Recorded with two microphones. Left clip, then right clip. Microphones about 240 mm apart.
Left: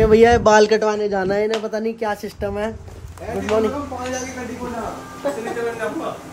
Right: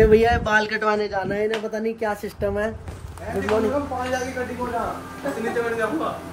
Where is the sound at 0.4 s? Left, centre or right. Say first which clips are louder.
Left 8 dB; centre.